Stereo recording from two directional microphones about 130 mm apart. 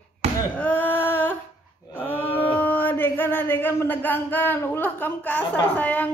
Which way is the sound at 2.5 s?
15° left (ahead or behind).